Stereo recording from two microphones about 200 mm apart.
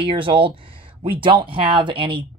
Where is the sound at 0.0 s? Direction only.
25° right (ahead or behind).